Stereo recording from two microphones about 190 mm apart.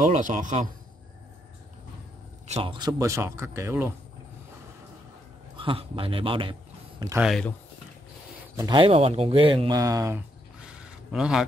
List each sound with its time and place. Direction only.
0.0 s a man's voice: 40° right (ahead or behind)
2.4 s speech: 30° right (ahead or behind)
3.0 s speech: 15° right (ahead or behind)
5.6 s a man's voice: 30° right (ahead or behind)
7.2 s speech: centre (ahead or behind)
8.5 s speech: 25° right (ahead or behind); by 11.4 s 5° right (ahead or behind)